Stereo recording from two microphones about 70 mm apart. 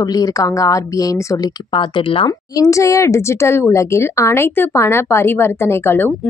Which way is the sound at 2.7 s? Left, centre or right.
Left.